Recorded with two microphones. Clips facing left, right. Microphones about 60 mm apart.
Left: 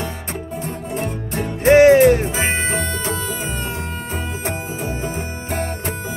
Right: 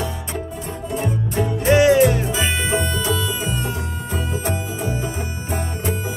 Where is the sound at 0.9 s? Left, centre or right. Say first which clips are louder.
Right 3 dB; left.